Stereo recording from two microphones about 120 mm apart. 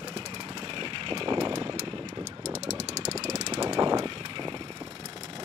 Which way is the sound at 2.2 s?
70° right (ahead or behind).